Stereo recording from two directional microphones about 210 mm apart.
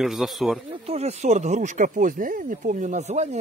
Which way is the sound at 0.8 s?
30° right (ahead or behind).